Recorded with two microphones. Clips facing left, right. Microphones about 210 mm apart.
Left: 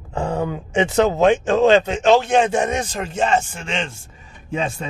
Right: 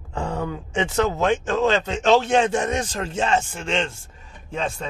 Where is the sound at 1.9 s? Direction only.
5° left (ahead or behind).